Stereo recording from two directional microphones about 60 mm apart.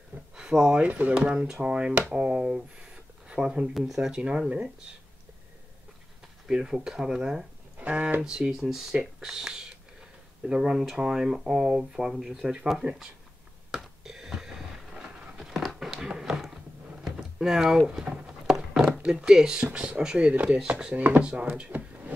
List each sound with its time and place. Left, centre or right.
0.4 s speech: centre
4.2 s speech: centre
6.4 s speech: centre
7.8 s speech: right
8.2 s speech: centre
13.7 s a sound: centre
15.0 s a sound: centre
18.9 s a sound: right
19.1 s speech: centre